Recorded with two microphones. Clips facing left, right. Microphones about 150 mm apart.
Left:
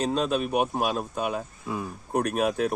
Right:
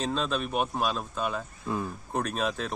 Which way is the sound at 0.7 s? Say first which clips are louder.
Left 3 dB; 50° left (ahead or behind).